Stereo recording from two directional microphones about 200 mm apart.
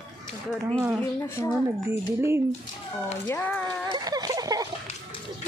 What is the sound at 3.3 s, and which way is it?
Speech, 10° left (ahead or behind).